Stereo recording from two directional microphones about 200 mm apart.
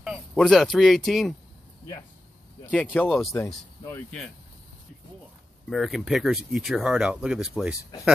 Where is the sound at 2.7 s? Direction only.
5° left (ahead or behind).